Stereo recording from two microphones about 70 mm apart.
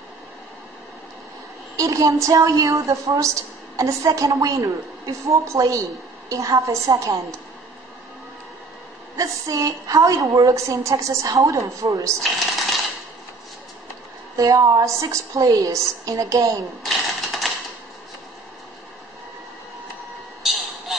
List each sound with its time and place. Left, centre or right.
1.8 s a woman's voice: right
9.1 s a woman's voice: right
12.2 s shuffling cards: centre
14.3 s a woman's voice: right
16.8 s typewriter: centre